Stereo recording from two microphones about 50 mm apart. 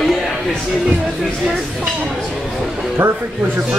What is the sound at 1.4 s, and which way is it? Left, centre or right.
Speech, centre.